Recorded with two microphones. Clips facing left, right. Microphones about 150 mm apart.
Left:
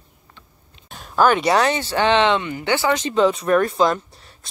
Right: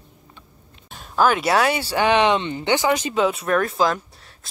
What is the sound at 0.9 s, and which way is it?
Speech, centre (ahead or behind).